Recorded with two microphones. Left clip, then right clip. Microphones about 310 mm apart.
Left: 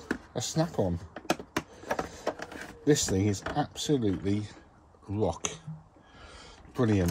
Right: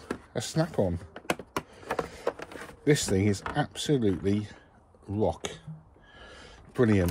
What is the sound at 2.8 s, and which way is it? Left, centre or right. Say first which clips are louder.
Speech: right 1 dB; right.